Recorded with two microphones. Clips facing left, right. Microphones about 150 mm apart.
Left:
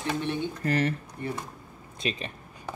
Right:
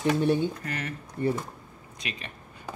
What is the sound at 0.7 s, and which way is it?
Speech, 30° left (ahead or behind).